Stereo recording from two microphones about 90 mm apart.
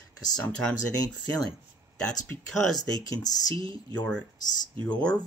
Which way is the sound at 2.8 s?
45° left (ahead or behind).